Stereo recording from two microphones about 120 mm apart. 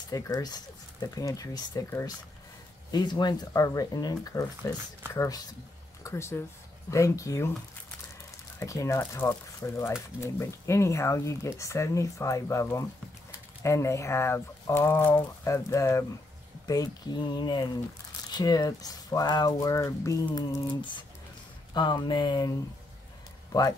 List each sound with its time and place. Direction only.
0.1 s speech: 30° left (ahead or behind)
2.9 s speech: 35° left (ahead or behind)
8.5 s speech: 25° left (ahead or behind)